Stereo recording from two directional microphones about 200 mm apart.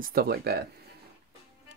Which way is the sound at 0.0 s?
45° right (ahead or behind).